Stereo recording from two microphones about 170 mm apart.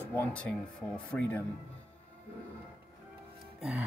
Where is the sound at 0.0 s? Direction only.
10° left (ahead or behind).